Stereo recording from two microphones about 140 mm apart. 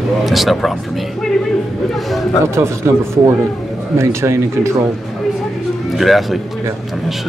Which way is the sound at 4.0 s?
20° right (ahead or behind).